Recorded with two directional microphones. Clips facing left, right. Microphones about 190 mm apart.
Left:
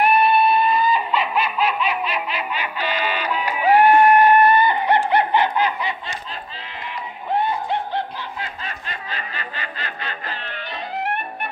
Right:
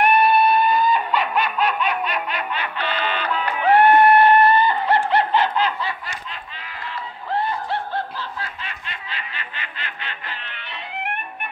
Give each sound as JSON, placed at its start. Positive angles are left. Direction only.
{"t": 0.0, "sound": "snicker", "side_deg": 0}
{"t": 7.3, "sound": "snicker", "side_deg": 20}
{"t": 8.6, "sound": "snicker", "side_deg": 40}